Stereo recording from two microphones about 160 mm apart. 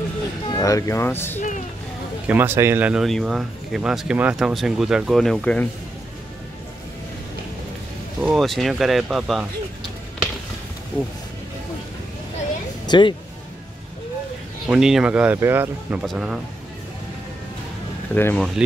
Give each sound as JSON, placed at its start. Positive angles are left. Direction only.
{"t": 0.5, "sound": "speech", "side_deg": 20}
{"t": 2.2, "sound": "speech", "side_deg": -15}
{"t": 8.2, "sound": "speech", "side_deg": 0}
{"t": 12.8, "sound": "music", "side_deg": 30}
{"t": 14.7, "sound": "speech", "side_deg": -5}
{"t": 18.1, "sound": "speech", "side_deg": 10}